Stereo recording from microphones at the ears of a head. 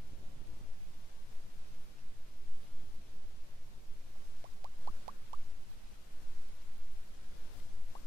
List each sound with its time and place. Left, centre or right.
4.4 s rodents: right